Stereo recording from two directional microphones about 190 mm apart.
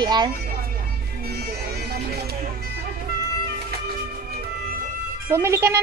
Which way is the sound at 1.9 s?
55° right (ahead or behind).